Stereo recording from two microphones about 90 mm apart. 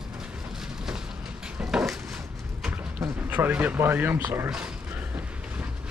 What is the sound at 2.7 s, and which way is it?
Speech, 20° right (ahead or behind).